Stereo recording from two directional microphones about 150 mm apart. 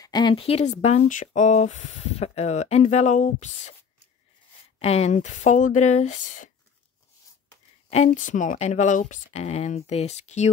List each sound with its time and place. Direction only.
0.0 s a woman's voice: 30° left (ahead or behind)
0.8 s speech: 55° left (ahead or behind)
4.7 s speech: 45° left (ahead or behind)
7.9 s speech: 50° left (ahead or behind)